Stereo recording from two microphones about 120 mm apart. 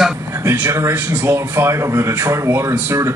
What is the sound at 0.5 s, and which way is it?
Speech, 25° right (ahead or behind).